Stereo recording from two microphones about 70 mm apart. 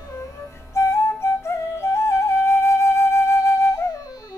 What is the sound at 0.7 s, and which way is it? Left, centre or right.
Flute, left.